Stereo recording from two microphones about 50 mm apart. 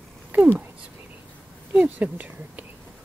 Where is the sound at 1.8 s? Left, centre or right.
Right.